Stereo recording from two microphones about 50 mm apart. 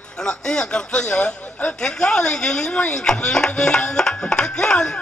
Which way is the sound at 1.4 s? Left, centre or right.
Left.